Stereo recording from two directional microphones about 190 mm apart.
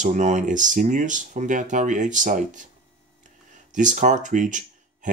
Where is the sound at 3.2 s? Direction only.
40° right (ahead or behind).